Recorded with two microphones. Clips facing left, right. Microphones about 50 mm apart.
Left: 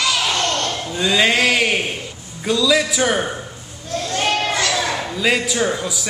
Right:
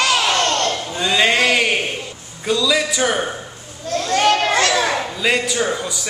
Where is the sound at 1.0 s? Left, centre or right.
Centre.